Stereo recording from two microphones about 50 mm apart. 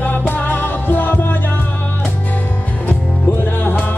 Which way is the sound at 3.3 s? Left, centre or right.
Left.